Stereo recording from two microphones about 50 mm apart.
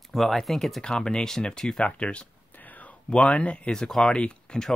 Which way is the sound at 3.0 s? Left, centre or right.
Left.